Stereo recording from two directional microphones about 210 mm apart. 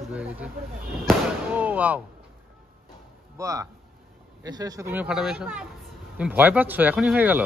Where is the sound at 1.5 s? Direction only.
5° right (ahead or behind).